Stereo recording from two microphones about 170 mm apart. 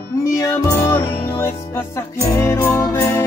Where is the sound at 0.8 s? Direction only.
15° left (ahead or behind).